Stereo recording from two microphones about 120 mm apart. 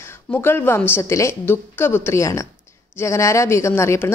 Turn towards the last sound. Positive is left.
turn(degrees=20)  # may be behind; listen again after turning